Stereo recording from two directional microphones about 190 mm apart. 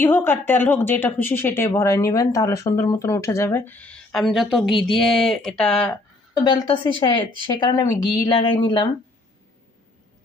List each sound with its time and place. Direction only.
0.0 s speech: 10° left (ahead or behind)
6.4 s speech: 25° left (ahead or behind)